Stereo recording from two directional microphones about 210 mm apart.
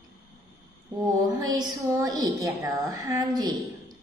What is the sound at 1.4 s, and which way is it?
A woman's voice, 20° right (ahead or behind).